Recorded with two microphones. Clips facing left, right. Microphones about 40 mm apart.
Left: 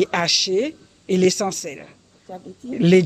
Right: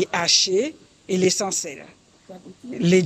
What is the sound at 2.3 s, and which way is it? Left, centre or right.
Speech, left.